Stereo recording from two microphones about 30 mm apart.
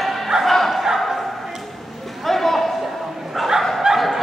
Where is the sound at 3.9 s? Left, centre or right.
Right.